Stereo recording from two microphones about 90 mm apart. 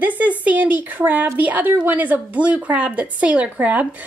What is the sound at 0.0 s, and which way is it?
Speech, 20° right (ahead or behind).